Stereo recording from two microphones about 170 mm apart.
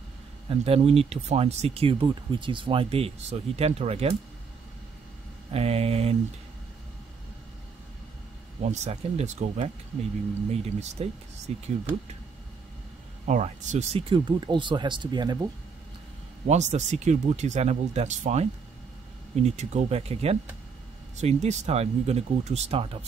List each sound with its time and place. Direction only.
0.5 s speech: 35° right (ahead or behind)
5.5 s speech: 35° right (ahead or behind)
8.6 s speech: 40° right (ahead or behind)
10.5 s speech: 40° right (ahead or behind)
13.2 s speech: 45° right (ahead or behind); by 15.3 s 25° right (ahead or behind)
16.4 s speech: 40° right (ahead or behind)